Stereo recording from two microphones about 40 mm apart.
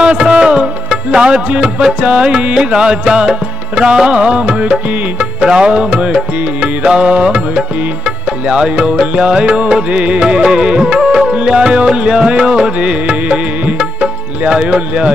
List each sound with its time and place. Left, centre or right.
0.0 s music: right
8.5 s music: right